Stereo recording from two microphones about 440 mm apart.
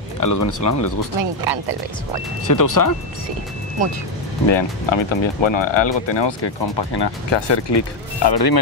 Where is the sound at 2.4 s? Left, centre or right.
Left.